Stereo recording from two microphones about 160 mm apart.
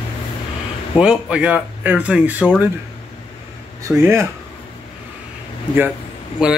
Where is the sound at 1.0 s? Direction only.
5° right (ahead or behind).